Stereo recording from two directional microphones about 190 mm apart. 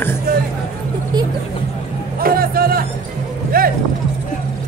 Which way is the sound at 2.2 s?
50° right (ahead or behind).